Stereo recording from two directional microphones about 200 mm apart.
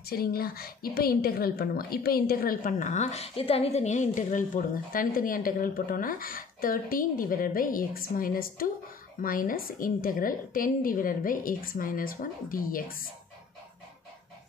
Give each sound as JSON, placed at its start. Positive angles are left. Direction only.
{"t": 0.1, "sound": "a woman's voice", "side_deg": 50}